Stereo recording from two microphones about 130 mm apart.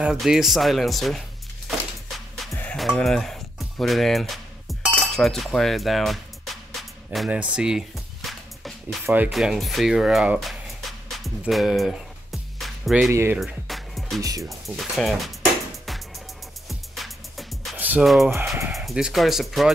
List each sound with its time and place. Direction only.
0.0 s speech: 5° right (ahead or behind)
1.7 s a sound: centre (ahead or behind)
2.7 s music: centre (ahead or behind)
4.9 s speech: centre (ahead or behind)
7.2 s music: 10° right (ahead or behind)
9.0 s speech: 15° right (ahead or behind)
9.3 s a sound: centre (ahead or behind)
13.1 s speech: 20° right (ahead or behind)
13.4 s music: centre (ahead or behind)
14.2 s speech: 25° right (ahead or behind)
14.5 s speech: centre (ahead or behind)
16.6 s music: centre (ahead or behind)
17.7 s music: 10° right (ahead or behind)
18.0 s speech: centre (ahead or behind)